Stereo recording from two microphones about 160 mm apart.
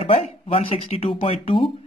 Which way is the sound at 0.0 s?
35° left (ahead or behind).